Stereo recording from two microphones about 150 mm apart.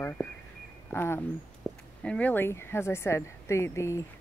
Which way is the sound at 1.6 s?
5° left (ahead or behind).